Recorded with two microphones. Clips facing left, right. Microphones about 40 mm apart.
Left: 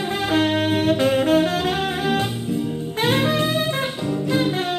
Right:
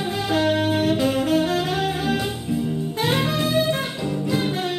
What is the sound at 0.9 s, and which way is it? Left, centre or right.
Saxophone, left.